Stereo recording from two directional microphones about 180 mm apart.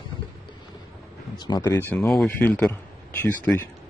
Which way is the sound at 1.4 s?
20° left (ahead or behind).